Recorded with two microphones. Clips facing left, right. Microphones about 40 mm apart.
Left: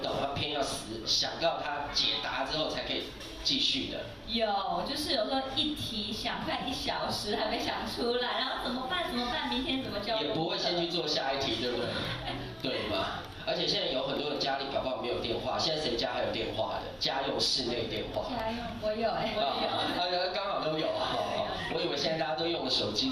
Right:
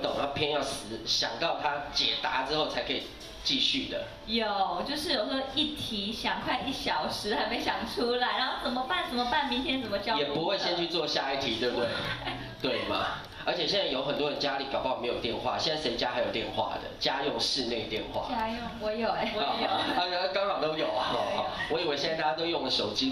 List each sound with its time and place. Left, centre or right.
0.0 s a sound: right
1.1 s a man's voice: right
6.2 s a man's voice: right